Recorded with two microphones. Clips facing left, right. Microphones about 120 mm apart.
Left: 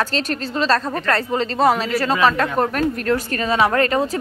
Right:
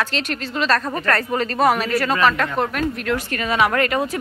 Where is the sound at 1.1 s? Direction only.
25° left (ahead or behind).